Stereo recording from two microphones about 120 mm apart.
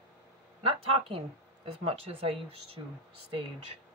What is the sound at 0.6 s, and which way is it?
Speech, 50° right (ahead or behind).